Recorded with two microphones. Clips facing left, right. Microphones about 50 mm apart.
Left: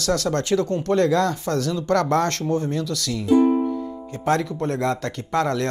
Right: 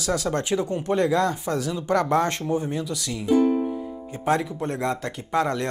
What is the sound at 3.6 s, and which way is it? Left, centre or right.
Music, centre.